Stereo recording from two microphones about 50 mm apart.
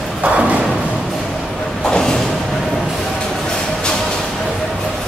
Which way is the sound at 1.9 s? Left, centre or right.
Centre.